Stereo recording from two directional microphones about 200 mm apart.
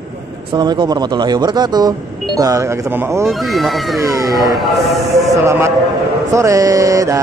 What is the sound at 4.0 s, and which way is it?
Speech, 15° right (ahead or behind).